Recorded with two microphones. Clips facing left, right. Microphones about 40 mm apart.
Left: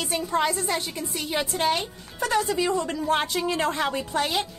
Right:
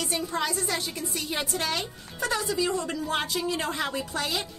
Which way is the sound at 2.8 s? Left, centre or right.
Left.